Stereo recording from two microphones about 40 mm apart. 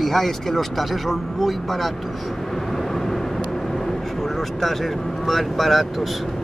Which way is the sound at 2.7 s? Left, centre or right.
Centre.